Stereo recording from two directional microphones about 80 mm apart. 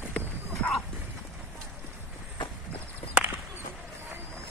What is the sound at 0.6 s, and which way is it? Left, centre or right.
Dog, centre.